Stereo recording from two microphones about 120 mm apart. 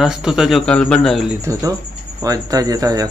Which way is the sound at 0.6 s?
5° left (ahead or behind).